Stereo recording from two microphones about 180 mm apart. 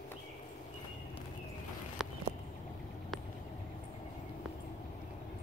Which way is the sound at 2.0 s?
Centre (ahead or behind).